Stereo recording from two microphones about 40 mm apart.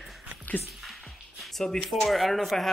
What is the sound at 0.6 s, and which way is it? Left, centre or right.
Music, centre.